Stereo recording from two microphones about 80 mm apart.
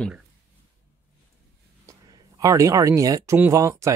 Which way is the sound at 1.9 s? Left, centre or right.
Right.